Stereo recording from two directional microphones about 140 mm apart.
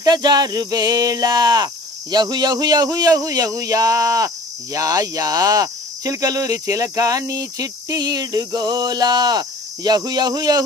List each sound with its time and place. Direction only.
0.0 s speech: 30° right (ahead or behind)